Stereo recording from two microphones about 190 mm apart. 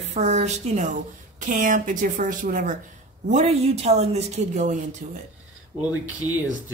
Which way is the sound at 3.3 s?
35° right (ahead or behind).